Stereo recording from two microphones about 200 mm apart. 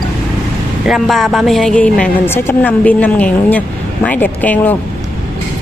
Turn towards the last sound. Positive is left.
turn(degrees=10)  # may be behind; listen again after turning